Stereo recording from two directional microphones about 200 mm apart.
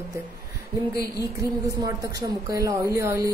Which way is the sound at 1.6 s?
15° right (ahead or behind).